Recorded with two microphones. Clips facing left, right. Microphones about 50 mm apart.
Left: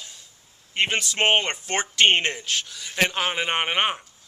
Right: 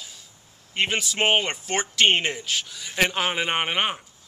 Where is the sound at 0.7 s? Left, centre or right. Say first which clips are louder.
Left 1 dB; centre.